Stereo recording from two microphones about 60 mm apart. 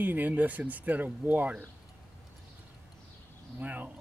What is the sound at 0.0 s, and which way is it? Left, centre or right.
Speech, right.